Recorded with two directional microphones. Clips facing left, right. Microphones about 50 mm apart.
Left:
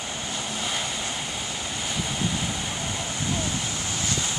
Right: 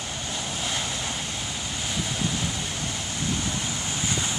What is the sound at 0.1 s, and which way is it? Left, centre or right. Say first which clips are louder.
Waves: left 1 dB; centre.